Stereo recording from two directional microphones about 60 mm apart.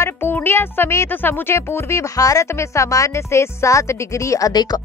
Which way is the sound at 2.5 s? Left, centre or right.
Left.